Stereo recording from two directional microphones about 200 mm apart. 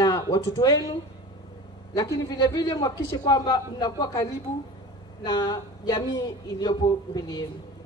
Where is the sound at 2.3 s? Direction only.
20° left (ahead or behind).